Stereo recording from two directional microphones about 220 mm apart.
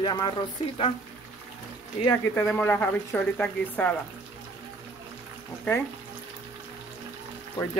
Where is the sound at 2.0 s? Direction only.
10° left (ahead or behind).